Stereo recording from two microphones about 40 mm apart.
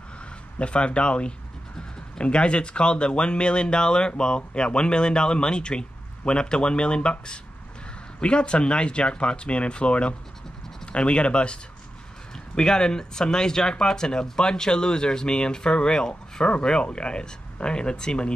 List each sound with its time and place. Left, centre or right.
0.6 s speech: left
12.5 s speech: centre